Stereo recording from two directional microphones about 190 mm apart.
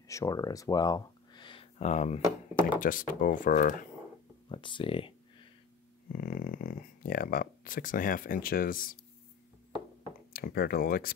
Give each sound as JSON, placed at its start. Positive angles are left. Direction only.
{"t": 0.1, "sound": "speech", "side_deg": 15}
{"t": 4.5, "sound": "a sound", "side_deg": 25}
{"t": 6.1, "sound": "speech", "side_deg": 50}
{"t": 10.3, "sound": "speech", "side_deg": 55}